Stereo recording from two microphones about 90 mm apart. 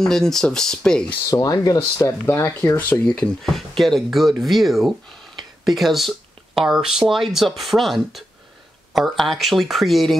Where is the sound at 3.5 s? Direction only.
Centre (ahead or behind).